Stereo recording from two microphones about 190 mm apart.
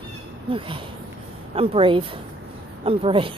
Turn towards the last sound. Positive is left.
turn(degrees=-30)  # may be behind; listen again after turning